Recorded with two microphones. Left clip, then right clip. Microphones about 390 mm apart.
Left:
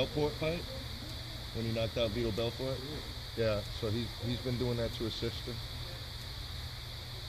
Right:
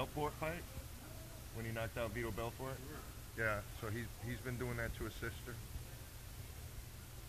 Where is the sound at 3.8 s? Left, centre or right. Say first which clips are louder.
Left 9 dB; centre.